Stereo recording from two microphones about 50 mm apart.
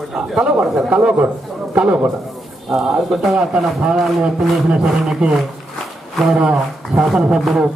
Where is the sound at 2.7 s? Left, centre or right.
Centre.